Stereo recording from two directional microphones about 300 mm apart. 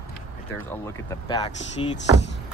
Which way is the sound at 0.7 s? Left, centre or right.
Centre.